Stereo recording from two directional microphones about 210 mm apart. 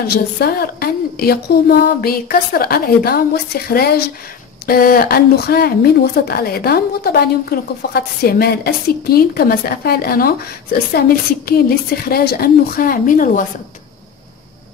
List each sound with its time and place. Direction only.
0.1 s a woman's voice: 45° left (ahead or behind)